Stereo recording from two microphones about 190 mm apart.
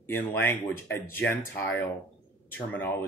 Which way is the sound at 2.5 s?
10° left (ahead or behind).